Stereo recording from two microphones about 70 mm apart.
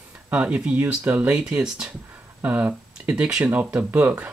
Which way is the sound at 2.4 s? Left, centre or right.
Right.